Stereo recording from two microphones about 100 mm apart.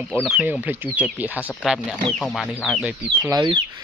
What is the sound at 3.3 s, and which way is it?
Speech, 45° right (ahead or behind).